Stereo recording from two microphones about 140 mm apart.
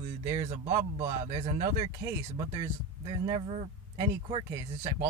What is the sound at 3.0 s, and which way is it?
Speech, 40° right (ahead or behind).